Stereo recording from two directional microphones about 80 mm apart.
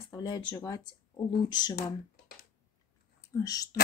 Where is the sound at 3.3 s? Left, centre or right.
Left.